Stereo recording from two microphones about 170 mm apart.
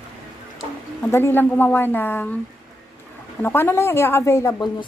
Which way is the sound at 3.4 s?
15° left (ahead or behind).